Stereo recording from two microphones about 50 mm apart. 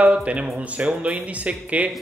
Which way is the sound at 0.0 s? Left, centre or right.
Right.